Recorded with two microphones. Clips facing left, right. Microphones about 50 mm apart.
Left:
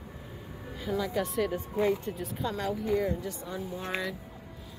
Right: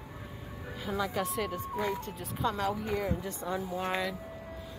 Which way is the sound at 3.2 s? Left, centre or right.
Right.